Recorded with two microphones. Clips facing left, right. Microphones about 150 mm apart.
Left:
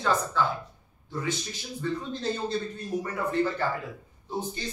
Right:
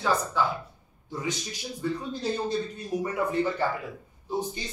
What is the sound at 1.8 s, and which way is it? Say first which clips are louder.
A man's voice: even; 10° right (ahead or behind).